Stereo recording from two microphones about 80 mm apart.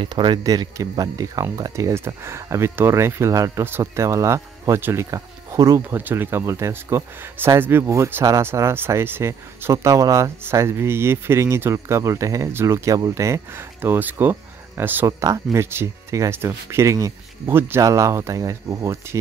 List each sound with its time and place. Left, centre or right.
0.0 s speech: right
5.9 s speech: right
13.7 s speech: right
15.0 s speech: right
17.6 s speech: right